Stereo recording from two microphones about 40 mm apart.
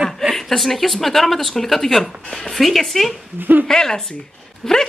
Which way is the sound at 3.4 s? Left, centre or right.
Right.